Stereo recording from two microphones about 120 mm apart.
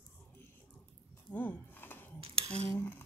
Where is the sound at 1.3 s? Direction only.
15° left (ahead or behind).